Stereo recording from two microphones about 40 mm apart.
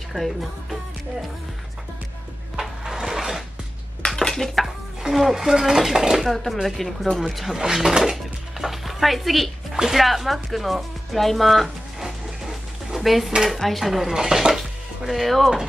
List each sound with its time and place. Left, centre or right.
0.1 s speech: centre
2.8 s a sound: centre
4.3 s dishes: centre
4.6 s stir: centre
5.3 s speech: centre
6.2 s speech: centre
12.0 s a sound: centre
13.5 s speech: centre
14.1 s speech: centre
14.6 s music: centre